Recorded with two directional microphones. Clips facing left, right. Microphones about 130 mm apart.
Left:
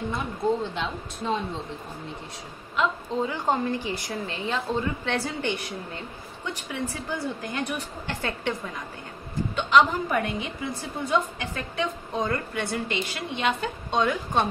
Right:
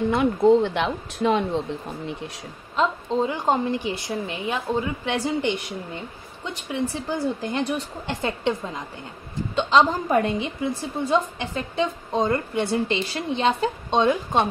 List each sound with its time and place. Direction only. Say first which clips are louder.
0.1 s speech: right 10 dB; 70° right (ahead or behind)
2.7 s a woman's voice: right 3 dB; 25° right (ahead or behind)